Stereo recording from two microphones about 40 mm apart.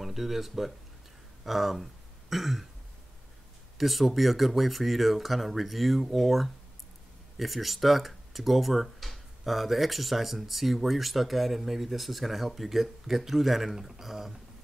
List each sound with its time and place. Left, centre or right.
0.0 s speech: centre
3.7 s speech: centre